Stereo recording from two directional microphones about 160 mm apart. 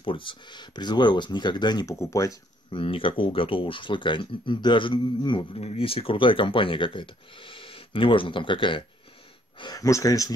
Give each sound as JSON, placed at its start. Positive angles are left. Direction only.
{"t": 0.0, "sound": "speech", "side_deg": 30}
{"t": 2.7, "sound": "speech", "side_deg": 35}